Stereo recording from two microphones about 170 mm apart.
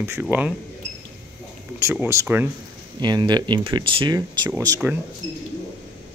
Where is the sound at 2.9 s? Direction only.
25° right (ahead or behind).